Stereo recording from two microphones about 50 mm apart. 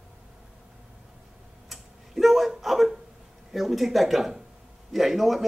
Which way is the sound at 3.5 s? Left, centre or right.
Centre.